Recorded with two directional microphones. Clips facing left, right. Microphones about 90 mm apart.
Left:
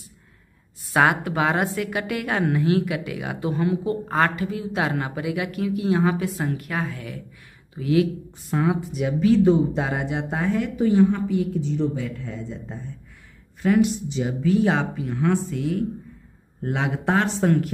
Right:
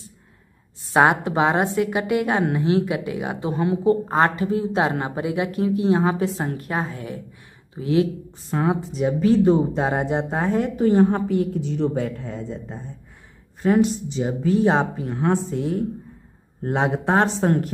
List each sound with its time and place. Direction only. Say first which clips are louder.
0.9 s a woman's voice: right 3 dB; 25° right (ahead or behind)
10.8 s a woman's voice: right 1 dB; 45° right (ahead or behind)
13.6 s speech: right 1 dB; 35° right (ahead or behind)